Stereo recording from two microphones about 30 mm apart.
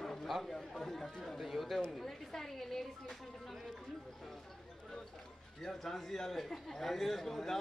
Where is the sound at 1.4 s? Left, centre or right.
Centre.